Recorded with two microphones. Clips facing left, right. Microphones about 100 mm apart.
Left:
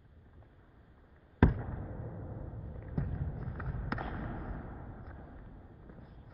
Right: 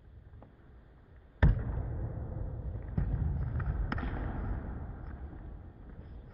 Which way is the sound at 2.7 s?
Centre (ahead or behind).